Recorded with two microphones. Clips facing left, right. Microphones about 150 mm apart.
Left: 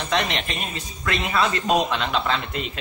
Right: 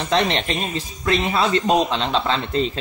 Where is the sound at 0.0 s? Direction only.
30° right (ahead or behind).